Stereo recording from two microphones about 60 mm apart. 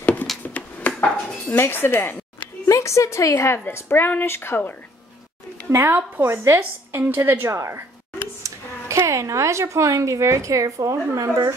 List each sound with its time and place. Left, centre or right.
0.0 s a sound: left
0.4 s dishes: left
1.6 s speech: left
2.7 s speech: left
3.3 s a woman's voice: left
5.7 s a woman's voice: right